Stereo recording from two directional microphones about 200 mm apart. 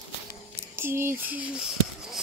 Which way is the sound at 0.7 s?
10° right (ahead or behind).